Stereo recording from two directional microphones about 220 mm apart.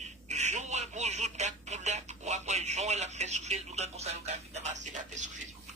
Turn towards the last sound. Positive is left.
turn(degrees=-35)  # may be behind; listen again after turning